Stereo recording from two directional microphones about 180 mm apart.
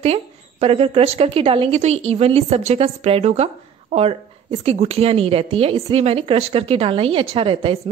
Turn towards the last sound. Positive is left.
turn(degrees=-30)  # may be behind; listen again after turning